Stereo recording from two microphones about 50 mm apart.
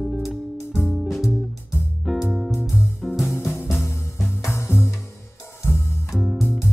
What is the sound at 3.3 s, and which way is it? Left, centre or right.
Music, left.